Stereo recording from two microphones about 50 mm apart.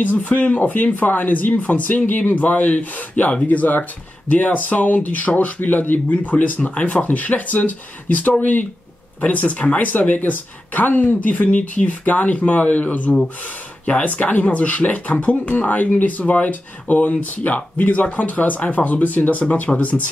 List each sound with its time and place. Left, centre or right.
0.0 s speech: left